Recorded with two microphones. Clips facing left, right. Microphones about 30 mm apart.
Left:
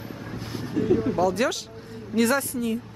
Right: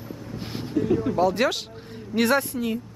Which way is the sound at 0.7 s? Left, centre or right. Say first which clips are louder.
Even; centre.